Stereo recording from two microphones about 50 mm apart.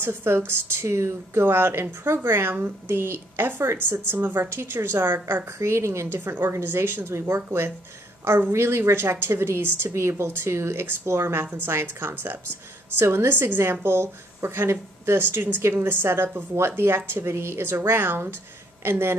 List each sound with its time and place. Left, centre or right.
0.0 s a woman's voice: right
1.4 s a woman's voice: right
4.6 s a woman's voice: right
5.6 s a woman's voice: right
6.0 s a woman's voice: right
11.5 s a woman's voice: right
13.0 s a woman's voice: right